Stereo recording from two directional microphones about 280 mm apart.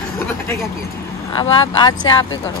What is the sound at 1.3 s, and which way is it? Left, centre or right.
Speech, centre.